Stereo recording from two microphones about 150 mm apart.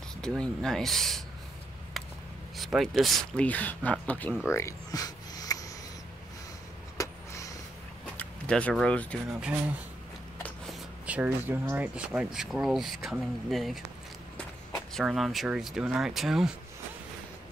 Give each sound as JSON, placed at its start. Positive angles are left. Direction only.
{"t": 0.2, "sound": "speech", "side_deg": 5}
{"t": 2.5, "sound": "speech", "side_deg": 0}
{"t": 4.6, "sound": "a sound", "side_deg": 20}
{"t": 7.0, "sound": "a sound", "side_deg": 20}
{"t": 8.2, "sound": "speech", "side_deg": 10}
{"t": 9.3, "sound": "speech", "side_deg": -10}
{"t": 10.7, "sound": "speech", "side_deg": -10}
{"t": 15.0, "sound": "speech", "side_deg": 0}